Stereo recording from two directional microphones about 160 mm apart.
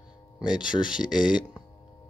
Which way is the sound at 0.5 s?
30° left (ahead or behind).